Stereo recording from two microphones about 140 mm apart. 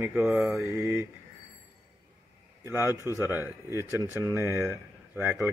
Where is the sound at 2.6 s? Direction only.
20° right (ahead or behind).